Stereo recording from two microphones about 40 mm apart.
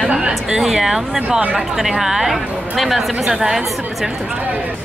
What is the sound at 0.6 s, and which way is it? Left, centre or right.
A woman's voice, centre.